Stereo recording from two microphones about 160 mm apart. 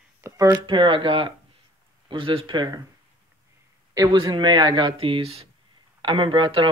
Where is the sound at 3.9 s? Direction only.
25° right (ahead or behind).